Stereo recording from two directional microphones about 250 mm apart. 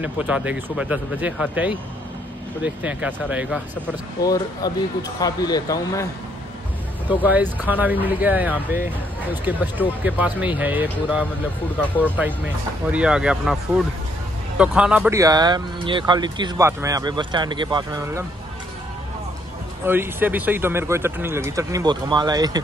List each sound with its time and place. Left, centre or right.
0.0 s speech: centre
4.2 s speech: centre
7.2 s speech: centre
12.9 s speech: centre
14.6 s speech: centre
19.8 s speech: centre